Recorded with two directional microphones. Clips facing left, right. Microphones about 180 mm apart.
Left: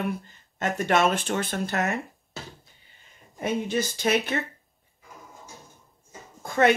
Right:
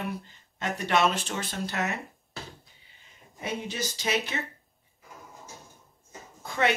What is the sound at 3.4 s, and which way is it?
Speech, 50° left (ahead or behind).